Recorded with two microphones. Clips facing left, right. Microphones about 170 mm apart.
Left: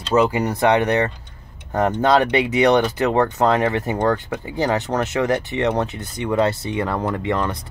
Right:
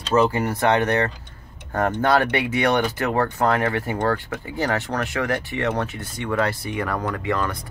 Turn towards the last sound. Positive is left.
turn(degrees=20)  # may be behind; listen again after turning